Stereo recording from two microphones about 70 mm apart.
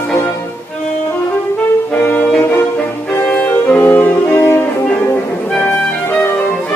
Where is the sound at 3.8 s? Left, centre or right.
Left.